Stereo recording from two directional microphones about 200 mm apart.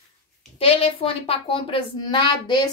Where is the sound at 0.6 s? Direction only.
30° left (ahead or behind).